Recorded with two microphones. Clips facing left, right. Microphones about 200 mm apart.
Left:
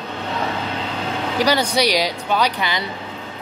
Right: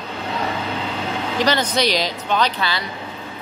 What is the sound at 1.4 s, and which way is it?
A woman's voice, 10° left (ahead or behind).